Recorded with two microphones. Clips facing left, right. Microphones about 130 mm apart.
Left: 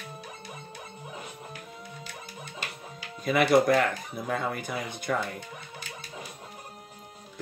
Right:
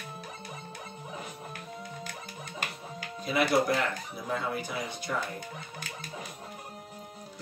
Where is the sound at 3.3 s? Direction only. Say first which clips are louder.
Left 5 dB; 55° left (ahead or behind).